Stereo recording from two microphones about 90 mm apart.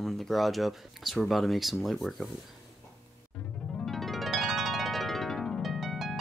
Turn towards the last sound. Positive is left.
turn(degrees=0)  # may be behind; listen again after turning